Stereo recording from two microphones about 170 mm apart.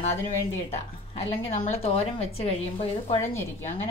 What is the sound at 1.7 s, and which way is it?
A woman's voice, 35° left (ahead or behind).